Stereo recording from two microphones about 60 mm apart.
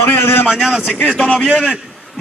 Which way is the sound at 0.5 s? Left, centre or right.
Centre.